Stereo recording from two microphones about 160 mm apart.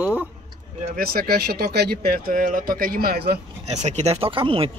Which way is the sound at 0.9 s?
70° right (ahead or behind).